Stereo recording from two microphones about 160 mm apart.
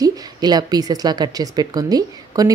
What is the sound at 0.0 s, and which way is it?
A woman's voice, 25° right (ahead or behind).